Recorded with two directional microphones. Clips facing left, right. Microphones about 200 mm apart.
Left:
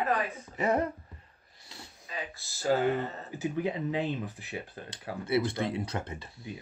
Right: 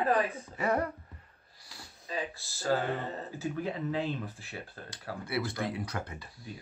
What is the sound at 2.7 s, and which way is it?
Speech, 20° left (ahead or behind).